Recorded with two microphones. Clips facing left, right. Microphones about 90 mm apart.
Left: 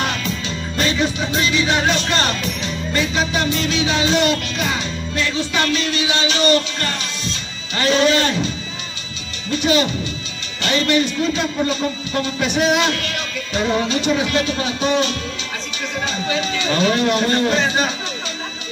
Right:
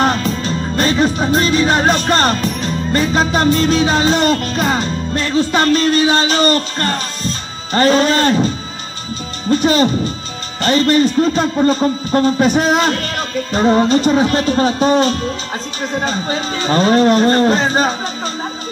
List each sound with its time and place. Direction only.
0.0 s music: 40° right (ahead or behind)
9.5 s speech: 40° right (ahead or behind)